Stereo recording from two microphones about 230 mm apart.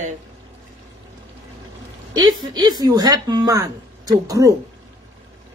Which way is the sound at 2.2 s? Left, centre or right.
Centre.